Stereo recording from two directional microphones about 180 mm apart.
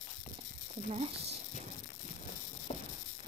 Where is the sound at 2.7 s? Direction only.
35° left (ahead or behind).